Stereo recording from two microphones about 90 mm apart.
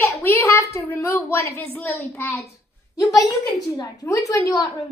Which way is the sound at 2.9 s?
40° left (ahead or behind).